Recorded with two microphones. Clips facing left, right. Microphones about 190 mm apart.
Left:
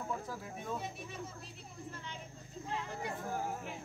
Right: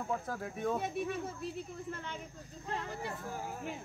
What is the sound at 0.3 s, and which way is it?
Speech, 55° right (ahead or behind).